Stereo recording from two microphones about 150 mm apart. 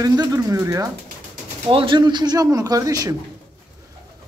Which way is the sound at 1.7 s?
35° right (ahead or behind).